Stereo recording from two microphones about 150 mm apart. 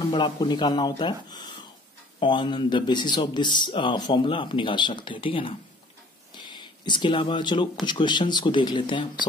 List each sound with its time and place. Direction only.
0.1 s speech: 30° left (ahead or behind)
6.5 s speech: 30° left (ahead or behind)